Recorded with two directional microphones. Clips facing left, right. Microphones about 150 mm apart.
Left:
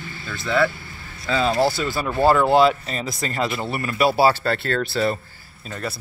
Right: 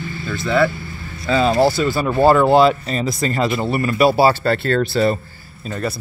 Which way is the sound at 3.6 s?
40° right (ahead or behind).